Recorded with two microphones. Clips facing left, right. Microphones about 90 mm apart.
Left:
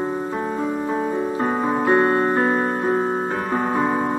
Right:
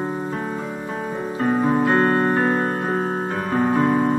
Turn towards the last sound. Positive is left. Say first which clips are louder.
# right 2 dB
turn(degrees=20)  # may be behind; listen again after turning